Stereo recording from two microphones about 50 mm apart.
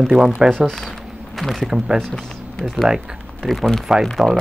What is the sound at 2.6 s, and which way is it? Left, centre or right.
Speech, centre.